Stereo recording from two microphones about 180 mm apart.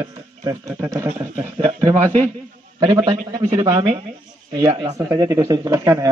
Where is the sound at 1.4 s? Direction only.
25° right (ahead or behind).